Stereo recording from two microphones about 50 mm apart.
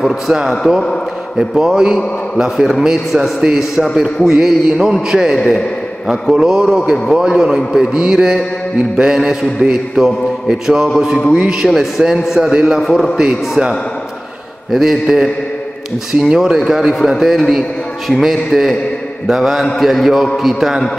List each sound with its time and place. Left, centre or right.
0.3 s a man's voice: centre